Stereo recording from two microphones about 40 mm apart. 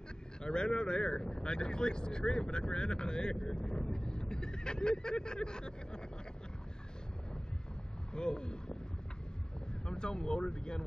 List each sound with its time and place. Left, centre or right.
0.4 s a sound: left
0.7 s speech: left
8.1 s speech: left
9.8 s speech: left